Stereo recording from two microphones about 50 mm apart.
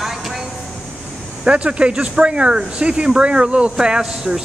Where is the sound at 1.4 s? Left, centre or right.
Right.